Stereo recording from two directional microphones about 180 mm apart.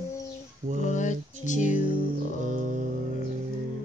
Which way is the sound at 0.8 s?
45° left (ahead or behind).